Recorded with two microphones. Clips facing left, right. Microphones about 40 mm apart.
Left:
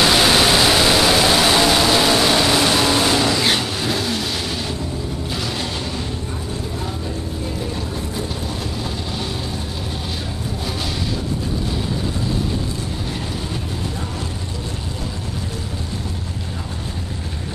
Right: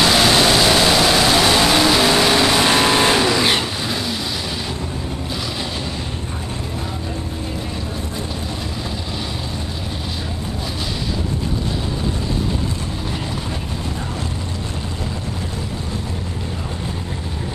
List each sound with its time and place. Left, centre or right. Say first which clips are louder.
0.0 s vehicle: even; centre
2.6 s vehicle: right 2 dB; right
3.8 s vehicle: left 2 dB; centre